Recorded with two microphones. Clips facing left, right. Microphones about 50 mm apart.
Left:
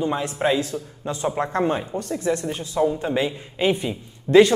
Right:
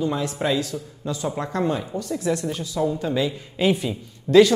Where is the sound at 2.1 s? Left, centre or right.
Left.